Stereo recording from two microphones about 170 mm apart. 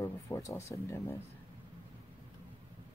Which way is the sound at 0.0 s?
15° left (ahead or behind).